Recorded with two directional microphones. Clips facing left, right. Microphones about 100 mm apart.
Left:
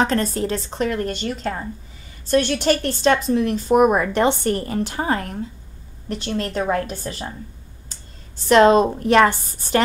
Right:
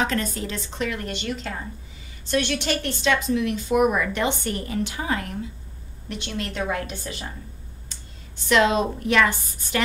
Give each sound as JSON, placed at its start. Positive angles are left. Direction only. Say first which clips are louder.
{"t": 0.0, "sound": "a woman's voice", "louder": "left 5 dB", "side_deg": 35}
{"t": 8.5, "sound": "a woman's voice", "louder": "left 7 dB", "side_deg": 40}